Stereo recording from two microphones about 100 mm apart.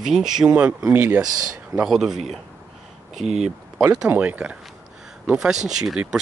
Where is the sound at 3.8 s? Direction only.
10° right (ahead or behind).